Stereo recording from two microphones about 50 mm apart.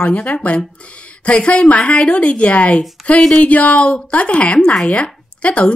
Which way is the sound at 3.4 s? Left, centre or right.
Left.